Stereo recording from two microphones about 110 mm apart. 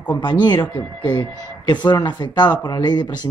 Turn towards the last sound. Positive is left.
turn(degrees=40)  # may be behind; listen again after turning